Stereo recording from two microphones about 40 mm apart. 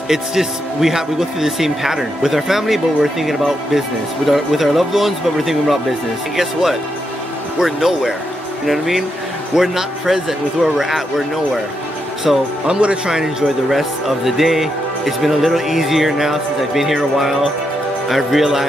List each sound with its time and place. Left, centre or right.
0.1 s speech: centre
12.6 s speech: right
13.1 s speech: centre